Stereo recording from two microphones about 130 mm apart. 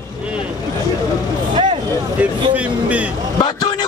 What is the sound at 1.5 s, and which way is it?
Vehicle, 40° right (ahead or behind).